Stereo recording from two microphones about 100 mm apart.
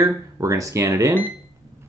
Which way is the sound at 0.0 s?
30° right (ahead or behind).